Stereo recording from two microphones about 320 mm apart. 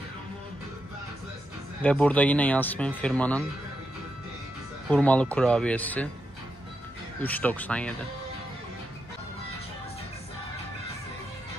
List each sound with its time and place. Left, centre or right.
1.8 s speech: centre
4.8 s speech: centre
7.2 s speech: centre